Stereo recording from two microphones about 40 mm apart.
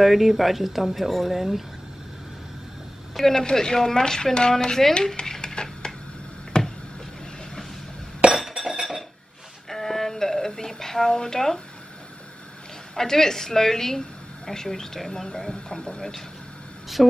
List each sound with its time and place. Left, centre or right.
0.0 s speech: centre
3.2 s a woman's voice: centre
5.1 s a sound: centre
6.5 s tick-tock: centre
8.4 s chink: centre
9.7 s a sound: centre
12.9 s a woman's voice: centre
17.0 s speech: centre